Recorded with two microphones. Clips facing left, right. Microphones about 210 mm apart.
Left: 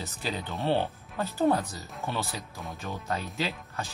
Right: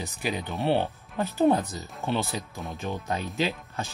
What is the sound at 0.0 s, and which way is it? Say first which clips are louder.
Speech: right 3 dB; 15° right (ahead or behind).